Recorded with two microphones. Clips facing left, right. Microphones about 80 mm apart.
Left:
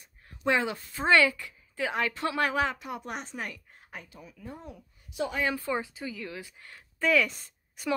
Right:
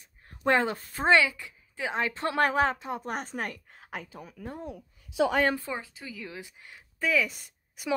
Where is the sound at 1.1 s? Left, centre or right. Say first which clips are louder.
Left 1 dB; centre.